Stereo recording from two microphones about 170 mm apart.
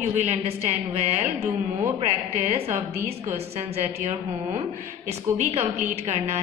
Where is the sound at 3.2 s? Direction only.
40° right (ahead or behind).